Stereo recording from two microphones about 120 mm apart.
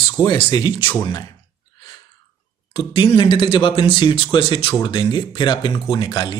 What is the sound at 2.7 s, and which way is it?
Speech, 40° left (ahead or behind).